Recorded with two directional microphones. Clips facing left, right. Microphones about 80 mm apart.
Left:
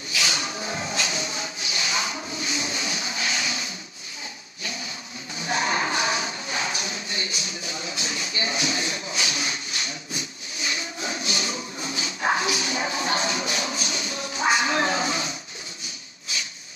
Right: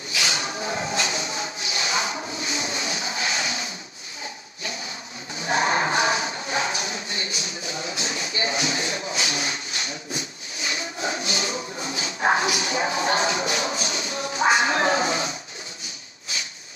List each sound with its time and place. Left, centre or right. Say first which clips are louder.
0.2 s music: right 2 dB; right
5.4 s a sound: right 3 dB; right
10.7 s dog: right 3 dB; right